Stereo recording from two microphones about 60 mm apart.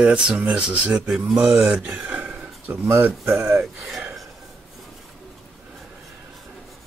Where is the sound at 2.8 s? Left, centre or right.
Right.